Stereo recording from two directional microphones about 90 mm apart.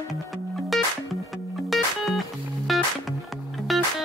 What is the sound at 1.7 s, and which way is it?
Music, centre (ahead or behind).